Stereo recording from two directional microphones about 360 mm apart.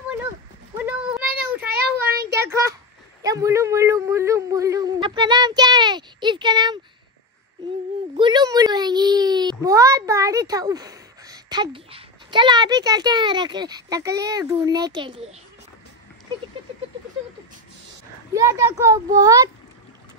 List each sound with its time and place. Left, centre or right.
0.7 s child singing: centre
1.7 s child singing: right
2.4 s a sound: centre
3.2 s yodeling: centre
8.2 s a sound: centre
18.3 s a child's voice: centre